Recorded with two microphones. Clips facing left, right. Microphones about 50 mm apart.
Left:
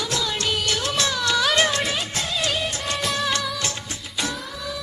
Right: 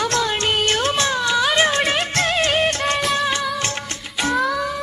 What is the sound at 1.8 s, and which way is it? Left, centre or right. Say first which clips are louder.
Music: right 7 dB; right.